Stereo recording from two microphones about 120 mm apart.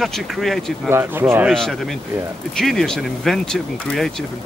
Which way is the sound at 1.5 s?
5° left (ahead or behind).